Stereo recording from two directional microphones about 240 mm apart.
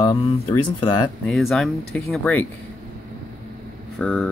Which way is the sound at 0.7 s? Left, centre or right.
Centre.